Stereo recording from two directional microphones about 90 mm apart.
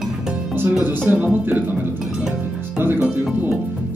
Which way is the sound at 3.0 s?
10° right (ahead or behind).